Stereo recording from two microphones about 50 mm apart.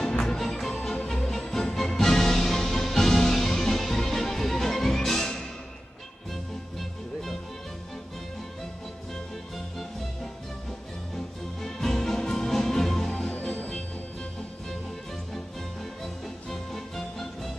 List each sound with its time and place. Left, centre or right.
0.2 s music: centre
11.6 s music: centre
13.3 s music: left
16.0 s music: centre